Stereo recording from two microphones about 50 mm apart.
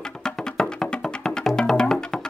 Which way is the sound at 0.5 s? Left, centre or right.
Centre.